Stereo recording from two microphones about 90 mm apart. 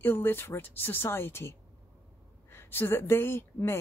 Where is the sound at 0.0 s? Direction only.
25° left (ahead or behind).